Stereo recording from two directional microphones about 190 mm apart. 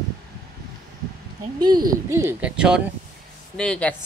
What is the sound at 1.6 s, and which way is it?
Speech, 20° right (ahead or behind).